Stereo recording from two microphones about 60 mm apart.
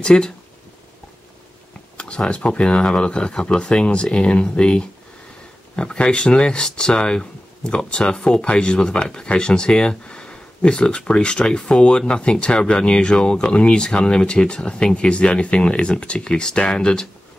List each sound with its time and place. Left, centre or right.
0.0 s speech: centre
2.0 s speech: centre